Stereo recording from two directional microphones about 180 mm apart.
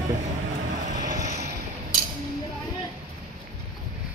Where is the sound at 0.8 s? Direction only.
45° right (ahead or behind).